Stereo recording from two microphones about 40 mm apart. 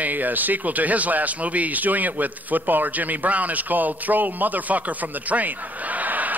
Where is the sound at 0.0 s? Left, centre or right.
Right.